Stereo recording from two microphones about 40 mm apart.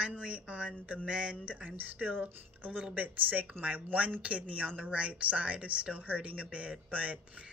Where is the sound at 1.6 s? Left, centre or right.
Right.